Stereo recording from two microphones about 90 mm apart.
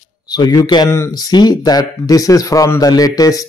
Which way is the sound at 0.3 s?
50° left (ahead or behind).